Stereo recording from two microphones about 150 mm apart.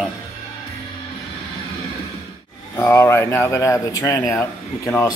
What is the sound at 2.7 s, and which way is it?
Speech, 20° left (ahead or behind).